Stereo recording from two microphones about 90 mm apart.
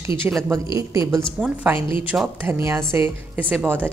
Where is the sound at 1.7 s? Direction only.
70° left (ahead or behind).